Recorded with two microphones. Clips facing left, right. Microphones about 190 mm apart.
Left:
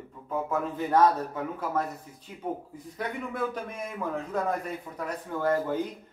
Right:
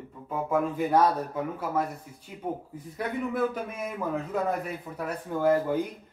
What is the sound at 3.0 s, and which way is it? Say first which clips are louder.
Speech: right 4 dB; 5° right (ahead or behind).